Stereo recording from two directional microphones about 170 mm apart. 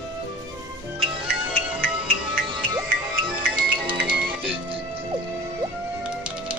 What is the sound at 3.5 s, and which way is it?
Music, 5° right (ahead or behind).